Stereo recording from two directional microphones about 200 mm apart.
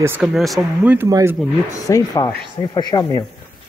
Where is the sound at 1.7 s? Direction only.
15° left (ahead or behind).